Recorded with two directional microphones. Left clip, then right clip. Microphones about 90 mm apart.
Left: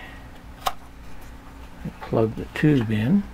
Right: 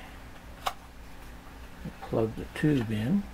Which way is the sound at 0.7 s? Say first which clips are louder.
Left 6 dB; 30° left (ahead or behind).